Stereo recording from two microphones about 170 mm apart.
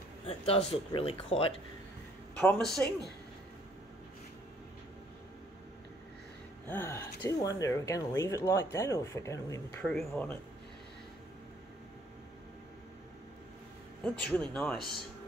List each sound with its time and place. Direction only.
0.3 s speech: 35° left (ahead or behind)
2.4 s speech: 5° left (ahead or behind)
6.7 s speech: 15° left (ahead or behind)
14.0 s speech: 5° left (ahead or behind)